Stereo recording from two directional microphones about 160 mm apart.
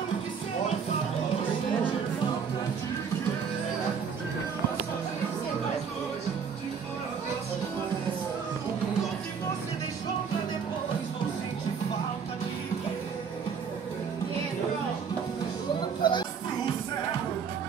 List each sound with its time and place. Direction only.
16.0 s music: 30° left (ahead or behind)